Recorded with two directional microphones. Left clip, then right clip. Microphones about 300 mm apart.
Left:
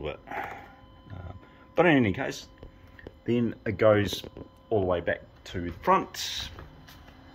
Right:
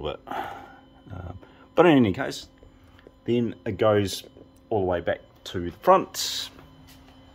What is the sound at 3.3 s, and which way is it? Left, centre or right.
Speech, centre.